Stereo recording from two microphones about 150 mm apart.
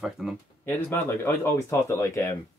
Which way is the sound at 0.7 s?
15° left (ahead or behind).